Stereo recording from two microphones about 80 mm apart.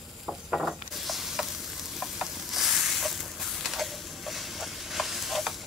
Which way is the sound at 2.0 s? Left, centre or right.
Centre.